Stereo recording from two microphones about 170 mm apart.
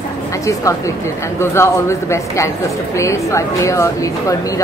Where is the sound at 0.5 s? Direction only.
20° left (ahead or behind).